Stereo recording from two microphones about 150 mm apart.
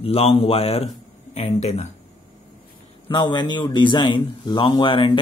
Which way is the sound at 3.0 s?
30° left (ahead or behind).